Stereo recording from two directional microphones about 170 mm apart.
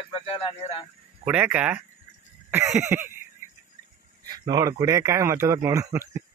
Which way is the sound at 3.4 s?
45° left (ahead or behind).